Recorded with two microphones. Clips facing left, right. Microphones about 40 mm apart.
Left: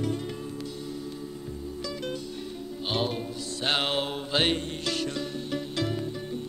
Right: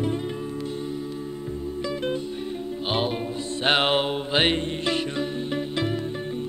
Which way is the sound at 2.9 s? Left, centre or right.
Right.